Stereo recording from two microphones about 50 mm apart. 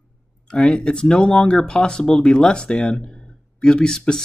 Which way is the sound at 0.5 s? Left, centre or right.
Centre.